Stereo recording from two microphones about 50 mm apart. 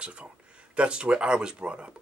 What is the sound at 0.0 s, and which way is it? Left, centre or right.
Speech, right.